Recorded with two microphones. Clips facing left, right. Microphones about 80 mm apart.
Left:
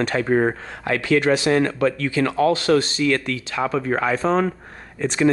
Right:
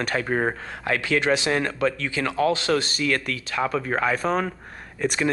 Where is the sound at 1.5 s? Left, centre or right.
Left.